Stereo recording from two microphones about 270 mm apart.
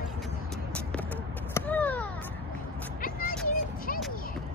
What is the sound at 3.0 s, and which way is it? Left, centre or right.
Vehicle, left.